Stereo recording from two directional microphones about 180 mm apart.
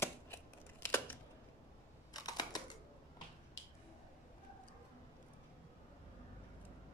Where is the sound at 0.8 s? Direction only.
10° left (ahead or behind).